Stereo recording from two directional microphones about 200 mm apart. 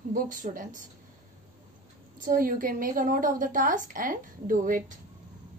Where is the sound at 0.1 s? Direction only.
40° right (ahead or behind).